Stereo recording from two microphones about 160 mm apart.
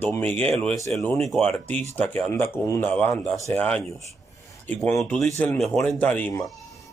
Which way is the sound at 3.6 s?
5° left (ahead or behind).